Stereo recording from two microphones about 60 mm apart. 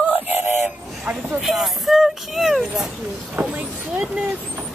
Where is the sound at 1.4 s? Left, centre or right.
Centre.